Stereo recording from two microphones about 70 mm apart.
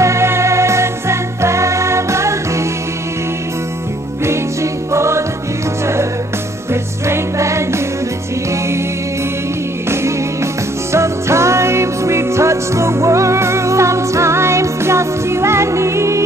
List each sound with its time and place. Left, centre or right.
0.0 s music: right
4.9 s music: right
6.7 s music: right
9.8 s music: right